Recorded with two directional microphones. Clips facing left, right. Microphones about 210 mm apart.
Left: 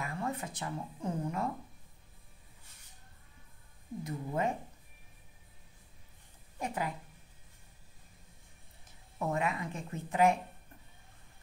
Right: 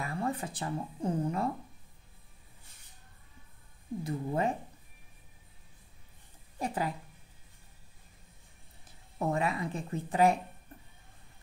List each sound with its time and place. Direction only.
0.0 s speech: 30° right (ahead or behind)
4.0 s speech: 30° right (ahead or behind)
6.6 s speech: 35° right (ahead or behind)
9.3 s speech: 35° right (ahead or behind)